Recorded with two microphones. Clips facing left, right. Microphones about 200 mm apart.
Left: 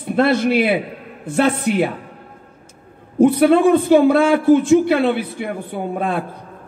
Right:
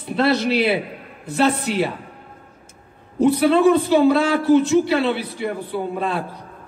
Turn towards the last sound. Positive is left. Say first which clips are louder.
# left 1 dB
turn(degrees=50)  # may be behind; listen again after turning